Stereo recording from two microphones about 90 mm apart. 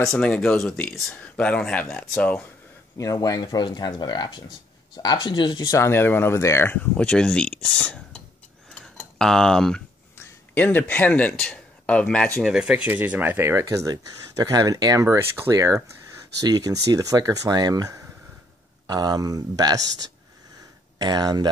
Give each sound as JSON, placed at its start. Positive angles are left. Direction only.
{"t": 0.0, "sound": "speech", "side_deg": 5}
{"t": 3.0, "sound": "speech", "side_deg": 40}
{"t": 5.7, "sound": "speech", "side_deg": 30}
{"t": 8.7, "sound": "cutlery", "side_deg": 5}
{"t": 10.1, "sound": "speech", "side_deg": 25}
{"t": 12.5, "sound": "speech", "side_deg": -10}
{"t": 21.0, "sound": "speech", "side_deg": -50}